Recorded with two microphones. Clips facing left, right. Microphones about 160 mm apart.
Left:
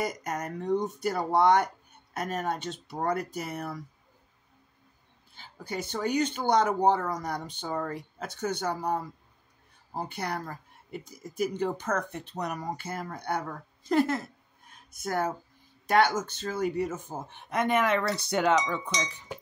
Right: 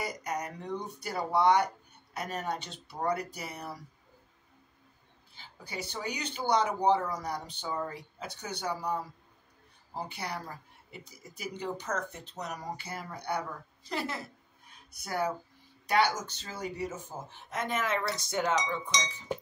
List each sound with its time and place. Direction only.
0.0 s a woman's voice: 50° left (ahead or behind)
5.3 s a woman's voice: 50° left (ahead or behind); by 18.8 s 65° left (ahead or behind)